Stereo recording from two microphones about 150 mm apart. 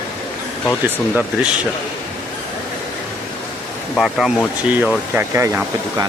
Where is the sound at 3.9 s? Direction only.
Centre (ahead or behind); by 6.1 s 20° right (ahead or behind).